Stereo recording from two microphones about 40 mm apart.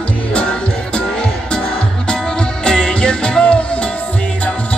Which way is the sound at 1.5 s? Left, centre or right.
Left.